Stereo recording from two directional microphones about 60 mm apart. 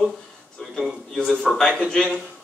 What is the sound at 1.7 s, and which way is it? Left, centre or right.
Speech, centre.